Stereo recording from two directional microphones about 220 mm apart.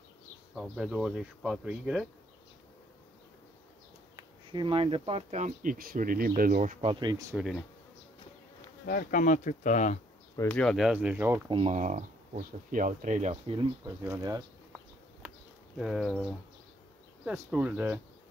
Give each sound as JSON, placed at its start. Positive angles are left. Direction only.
{"t": 0.6, "sound": "speech", "side_deg": 0}
{"t": 4.5, "sound": "speech", "side_deg": -25}
{"t": 8.8, "sound": "speech", "side_deg": 40}
{"t": 10.3, "sound": "speech", "side_deg": 10}
{"t": 11.5, "sound": "speech", "side_deg": -30}
{"t": 14.0, "sound": "speech", "side_deg": -15}
{"t": 15.8, "sound": "speech", "side_deg": 0}